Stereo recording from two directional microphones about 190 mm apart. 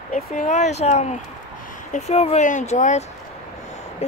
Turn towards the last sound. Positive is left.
turn(degrees=35)  # may be behind; listen again after turning